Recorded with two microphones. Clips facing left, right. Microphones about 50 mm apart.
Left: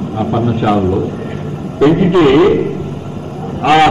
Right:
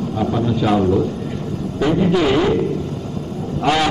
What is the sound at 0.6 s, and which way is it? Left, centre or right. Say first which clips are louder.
Speech: left 2 dB; left.